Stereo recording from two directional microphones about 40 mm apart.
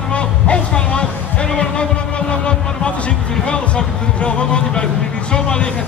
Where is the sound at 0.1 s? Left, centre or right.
Left.